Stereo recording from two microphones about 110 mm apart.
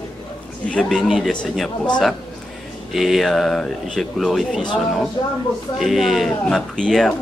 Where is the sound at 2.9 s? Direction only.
Centre (ahead or behind).